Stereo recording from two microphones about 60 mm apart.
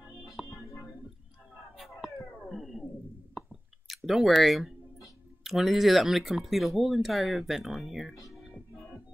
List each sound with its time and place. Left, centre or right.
0.2 s music: centre
2.5 s a sound: centre
3.3 s chewing: centre
5.4 s speech: centre
8.3 s music: centre